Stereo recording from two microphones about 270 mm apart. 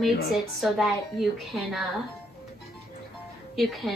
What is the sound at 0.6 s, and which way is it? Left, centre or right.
Speech, centre.